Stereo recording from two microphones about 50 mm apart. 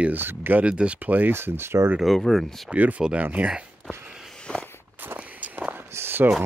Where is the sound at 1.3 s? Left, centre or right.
Right.